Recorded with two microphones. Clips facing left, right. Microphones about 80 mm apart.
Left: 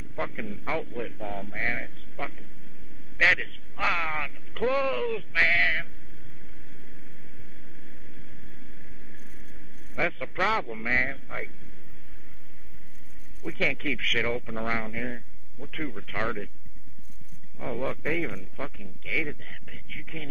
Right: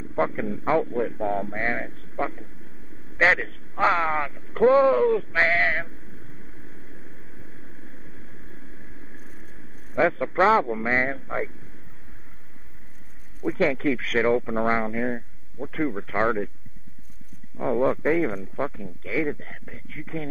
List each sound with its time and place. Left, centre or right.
0.1 s speech: right
9.9 s speech: right
13.4 s speech: right
17.6 s speech: right